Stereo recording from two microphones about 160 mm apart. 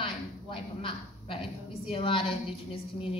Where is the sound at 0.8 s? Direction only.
35° left (ahead or behind).